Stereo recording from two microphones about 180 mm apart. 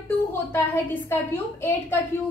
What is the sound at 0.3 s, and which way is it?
A woman's voice, 10° left (ahead or behind).